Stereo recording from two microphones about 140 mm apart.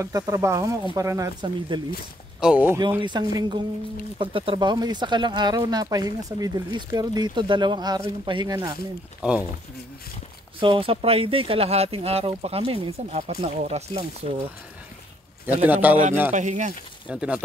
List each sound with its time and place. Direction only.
0.0 s speech: 20° right (ahead or behind)
1.7 s speech: 35° right (ahead or behind)
2.4 s a man's voice: 10° right (ahead or behind)
3.0 s speech: 30° right (ahead or behind)
9.2 s a man's voice: 10° right (ahead or behind)
10.6 s speech: 40° right (ahead or behind)
15.4 s a man's voice: 15° right (ahead or behind)
16.3 s speech: 60° right (ahead or behind)
17.1 s a man's voice: 5° right (ahead or behind)